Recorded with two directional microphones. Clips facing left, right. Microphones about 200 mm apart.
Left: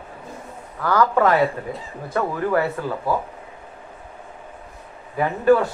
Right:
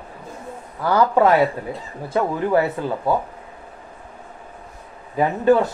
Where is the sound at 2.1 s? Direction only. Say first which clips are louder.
Right 2 dB; 20° right (ahead or behind).